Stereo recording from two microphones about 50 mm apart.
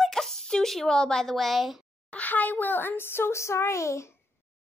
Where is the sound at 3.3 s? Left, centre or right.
Left.